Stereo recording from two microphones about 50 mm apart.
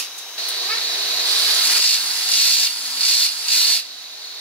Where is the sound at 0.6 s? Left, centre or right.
Left.